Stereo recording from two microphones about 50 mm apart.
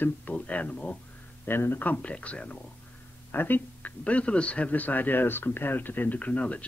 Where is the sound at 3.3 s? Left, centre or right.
Left.